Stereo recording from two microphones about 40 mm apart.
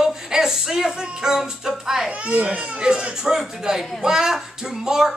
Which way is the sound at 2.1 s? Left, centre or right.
Right.